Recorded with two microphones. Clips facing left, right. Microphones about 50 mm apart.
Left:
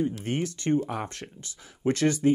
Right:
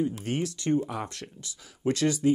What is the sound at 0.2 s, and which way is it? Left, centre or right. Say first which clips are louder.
Speech: left 1 dB; left.